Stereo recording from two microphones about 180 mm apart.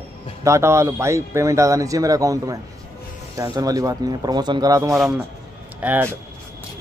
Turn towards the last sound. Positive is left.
turn(degrees=-10)  # may be behind; listen again after turning